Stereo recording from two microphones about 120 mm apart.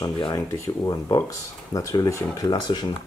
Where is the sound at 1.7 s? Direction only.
25° left (ahead or behind).